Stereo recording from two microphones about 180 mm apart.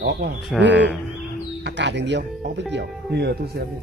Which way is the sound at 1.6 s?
80° right.